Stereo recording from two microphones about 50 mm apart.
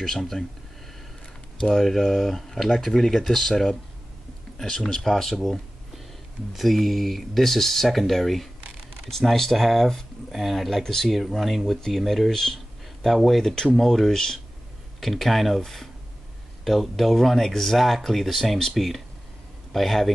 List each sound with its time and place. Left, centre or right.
0.2 s speech: centre
1.6 s speech: centre
5.0 s speech: centre